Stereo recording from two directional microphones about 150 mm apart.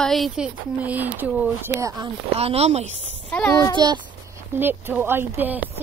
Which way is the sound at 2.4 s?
45° right (ahead or behind).